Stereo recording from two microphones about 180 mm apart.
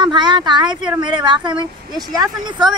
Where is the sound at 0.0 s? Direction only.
25° right (ahead or behind).